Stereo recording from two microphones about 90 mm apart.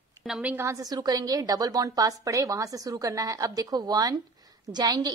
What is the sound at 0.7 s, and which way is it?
A woman's voice, 45° right (ahead or behind).